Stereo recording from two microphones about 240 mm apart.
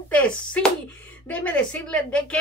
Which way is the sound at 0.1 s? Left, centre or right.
Centre.